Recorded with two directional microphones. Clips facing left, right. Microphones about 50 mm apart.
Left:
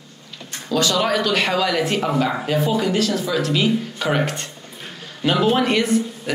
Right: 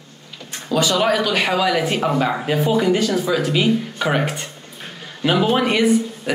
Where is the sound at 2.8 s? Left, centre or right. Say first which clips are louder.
Right 3 dB; right.